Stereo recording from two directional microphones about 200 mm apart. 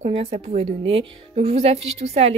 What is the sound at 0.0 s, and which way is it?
A woman's voice, 30° right (ahead or behind).